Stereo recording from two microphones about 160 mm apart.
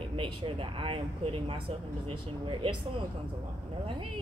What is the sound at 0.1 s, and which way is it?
A woman's voice, 35° right (ahead or behind).